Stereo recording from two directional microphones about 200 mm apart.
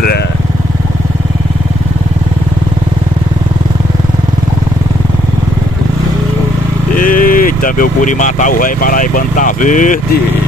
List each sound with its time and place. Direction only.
7.0 s speech: 45° left (ahead or behind)